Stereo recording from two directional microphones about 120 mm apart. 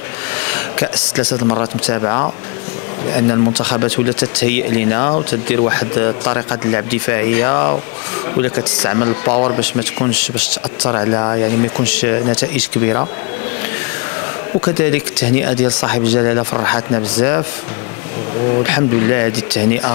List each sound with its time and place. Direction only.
0.4 s speech: 20° left (ahead or behind)
14.6 s speech: 20° left (ahead or behind)
18.6 s speech: 25° left (ahead or behind)